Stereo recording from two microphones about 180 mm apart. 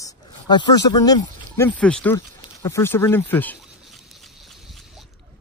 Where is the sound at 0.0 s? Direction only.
20° left (ahead or behind).